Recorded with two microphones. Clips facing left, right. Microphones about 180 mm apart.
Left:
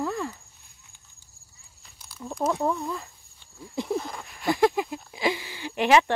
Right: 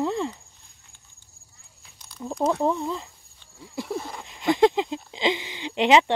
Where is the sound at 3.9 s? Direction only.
Centre (ahead or behind).